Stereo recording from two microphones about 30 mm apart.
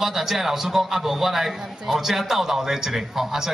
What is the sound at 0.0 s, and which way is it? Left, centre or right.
A man's voice, centre.